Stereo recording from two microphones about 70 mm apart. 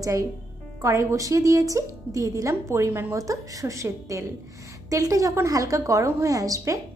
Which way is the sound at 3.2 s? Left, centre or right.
Right.